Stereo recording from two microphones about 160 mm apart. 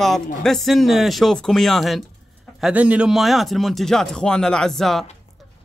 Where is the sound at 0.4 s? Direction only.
Centre (ahead or behind).